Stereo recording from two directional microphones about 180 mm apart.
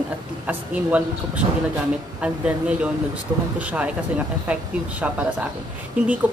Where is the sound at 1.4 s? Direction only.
30° right (ahead or behind).